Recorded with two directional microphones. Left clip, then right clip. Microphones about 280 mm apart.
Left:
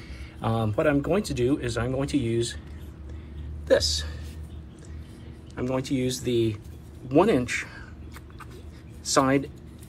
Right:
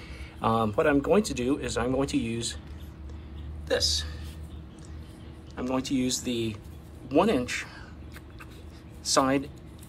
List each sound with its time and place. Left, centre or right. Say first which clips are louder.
0.4 s speech: right 2 dB; centre
3.6 s speech: left 4 dB; centre
5.6 s speech: left 1 dB; centre
9.0 s speech: left 2 dB; centre